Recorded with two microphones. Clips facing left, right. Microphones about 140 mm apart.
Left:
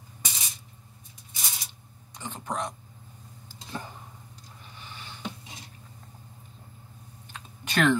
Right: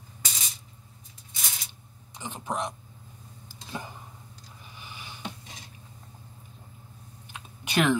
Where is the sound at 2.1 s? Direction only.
15° right (ahead or behind).